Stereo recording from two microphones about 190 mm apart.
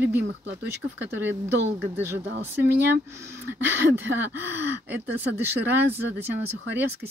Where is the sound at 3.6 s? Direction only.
10° right (ahead or behind).